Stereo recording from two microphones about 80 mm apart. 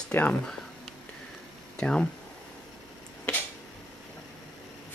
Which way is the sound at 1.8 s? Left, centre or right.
Centre.